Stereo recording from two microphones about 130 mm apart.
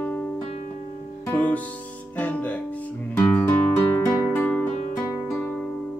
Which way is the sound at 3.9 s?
25° left (ahead or behind).